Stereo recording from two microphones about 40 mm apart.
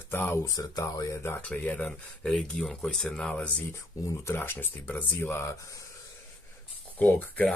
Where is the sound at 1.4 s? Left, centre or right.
Left.